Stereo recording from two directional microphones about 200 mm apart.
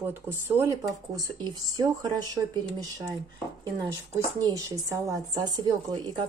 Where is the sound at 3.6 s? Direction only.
20° right (ahead or behind).